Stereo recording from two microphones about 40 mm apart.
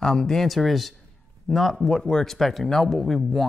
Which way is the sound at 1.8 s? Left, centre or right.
Centre.